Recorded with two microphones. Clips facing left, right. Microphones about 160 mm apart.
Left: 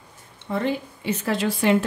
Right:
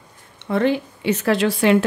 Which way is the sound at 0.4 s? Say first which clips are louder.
Right 6 dB; 80° right.